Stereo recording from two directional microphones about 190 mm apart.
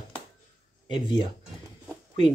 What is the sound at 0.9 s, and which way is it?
Speech, 25° left (ahead or behind).